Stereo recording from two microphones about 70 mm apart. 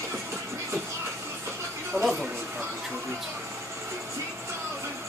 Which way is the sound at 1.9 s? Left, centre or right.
Right.